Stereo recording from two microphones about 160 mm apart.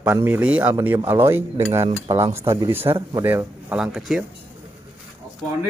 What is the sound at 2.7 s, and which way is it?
Speech, 15° right (ahead or behind).